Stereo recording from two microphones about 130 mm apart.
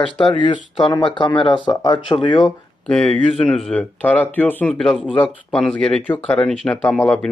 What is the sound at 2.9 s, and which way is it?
Speech, 5° left (ahead or behind).